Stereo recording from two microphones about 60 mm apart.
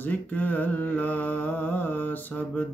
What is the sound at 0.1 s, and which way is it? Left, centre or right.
Mantra, left.